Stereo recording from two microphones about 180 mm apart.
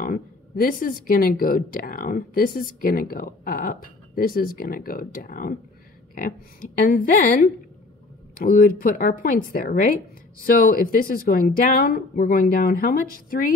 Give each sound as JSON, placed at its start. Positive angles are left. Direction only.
{"t": 0.0, "sound": "speech", "side_deg": 50}
{"t": 8.5, "sound": "speech", "side_deg": 55}